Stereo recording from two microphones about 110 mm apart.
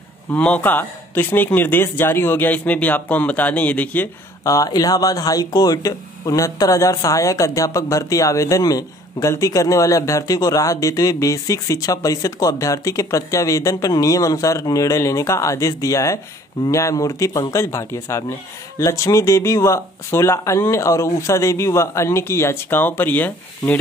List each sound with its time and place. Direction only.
0.3 s speech: 15° left (ahead or behind)
4.5 s speech: 35° left (ahead or behind); by 23.8 s 15° left (ahead or behind)